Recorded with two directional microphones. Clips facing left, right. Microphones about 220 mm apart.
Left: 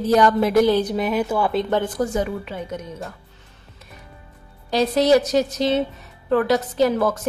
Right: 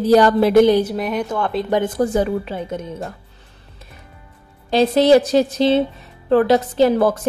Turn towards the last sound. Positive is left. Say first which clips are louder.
# right 4 dB
turn(degrees=-30)  # may be behind; listen again after turning